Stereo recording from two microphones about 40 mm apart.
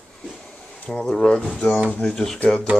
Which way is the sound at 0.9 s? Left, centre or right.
Centre.